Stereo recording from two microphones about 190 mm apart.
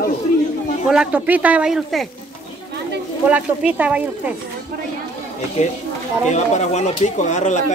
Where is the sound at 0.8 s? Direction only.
5° right (ahead or behind).